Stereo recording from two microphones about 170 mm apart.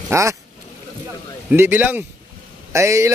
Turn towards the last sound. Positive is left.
turn(degrees=-15)  # may be behind; listen again after turning